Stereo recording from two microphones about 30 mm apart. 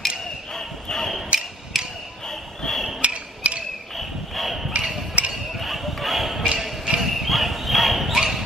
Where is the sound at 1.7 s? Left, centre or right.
Centre.